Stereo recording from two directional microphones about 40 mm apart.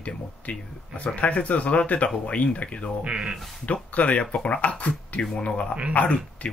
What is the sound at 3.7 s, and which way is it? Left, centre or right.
Speech, left.